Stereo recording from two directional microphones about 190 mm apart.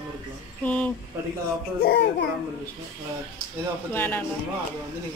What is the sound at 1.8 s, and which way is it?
Speech, 55° left (ahead or behind).